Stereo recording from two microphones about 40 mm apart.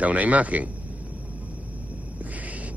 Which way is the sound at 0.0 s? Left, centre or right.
Right.